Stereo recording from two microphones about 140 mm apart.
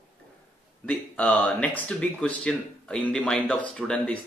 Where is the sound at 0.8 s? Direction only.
10° left (ahead or behind).